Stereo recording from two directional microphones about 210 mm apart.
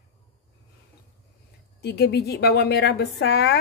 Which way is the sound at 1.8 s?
50° left (ahead or behind).